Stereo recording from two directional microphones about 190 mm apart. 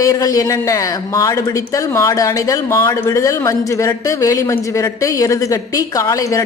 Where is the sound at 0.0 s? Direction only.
15° left (ahead or behind).